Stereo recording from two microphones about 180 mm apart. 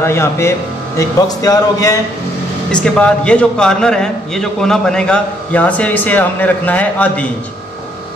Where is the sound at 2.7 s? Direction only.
5° left (ahead or behind).